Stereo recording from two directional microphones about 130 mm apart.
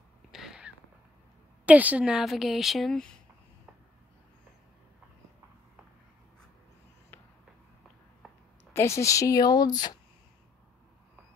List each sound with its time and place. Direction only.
0.3 s a sound: 5° right (ahead or behind)
1.7 s a woman's voice: 10° right (ahead or behind); by 3.2 s 5° left (ahead or behind)
8.7 s speech: 20° left (ahead or behind)